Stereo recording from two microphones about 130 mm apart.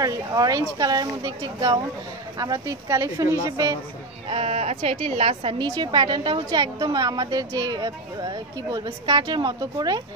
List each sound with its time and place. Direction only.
0.0 s a woman's voice: 30° right (ahead or behind)
4.3 s a woman's voice: 50° right (ahead or behind); by 10.0 s 30° right (ahead or behind)